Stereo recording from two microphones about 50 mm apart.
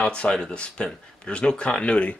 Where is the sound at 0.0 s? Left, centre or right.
Centre.